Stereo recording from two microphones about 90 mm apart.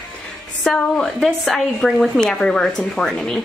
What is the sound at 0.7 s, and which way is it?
Speech, 10° left (ahead or behind).